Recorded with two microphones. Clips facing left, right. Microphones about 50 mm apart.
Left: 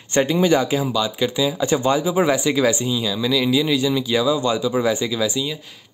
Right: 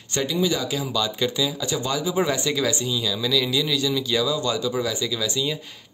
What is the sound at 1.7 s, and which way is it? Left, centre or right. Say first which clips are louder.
Speech: left 7 dB; left.